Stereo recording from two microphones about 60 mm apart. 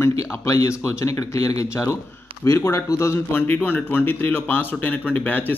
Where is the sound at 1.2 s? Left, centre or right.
Left.